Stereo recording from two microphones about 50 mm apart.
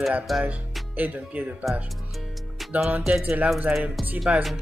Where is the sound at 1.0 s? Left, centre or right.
Right.